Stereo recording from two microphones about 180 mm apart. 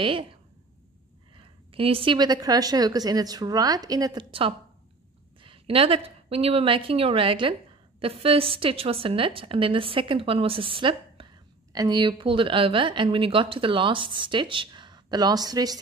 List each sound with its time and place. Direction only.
0.0 s a woman's voice: 30° right (ahead or behind)